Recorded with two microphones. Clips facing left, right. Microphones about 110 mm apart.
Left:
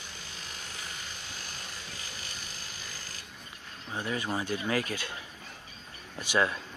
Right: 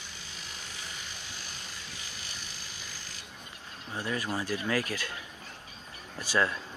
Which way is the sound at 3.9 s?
20° left (ahead or behind).